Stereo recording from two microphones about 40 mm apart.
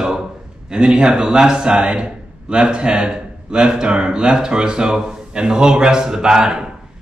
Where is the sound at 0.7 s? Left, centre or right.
Right.